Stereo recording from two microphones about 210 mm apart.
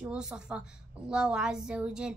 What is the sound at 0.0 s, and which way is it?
Speech, 5° right (ahead or behind).